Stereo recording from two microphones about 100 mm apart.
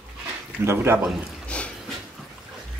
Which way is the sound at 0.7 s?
25° right (ahead or behind).